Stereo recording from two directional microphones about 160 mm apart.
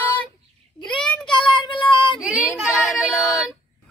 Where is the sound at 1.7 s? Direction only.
30° left (ahead or behind).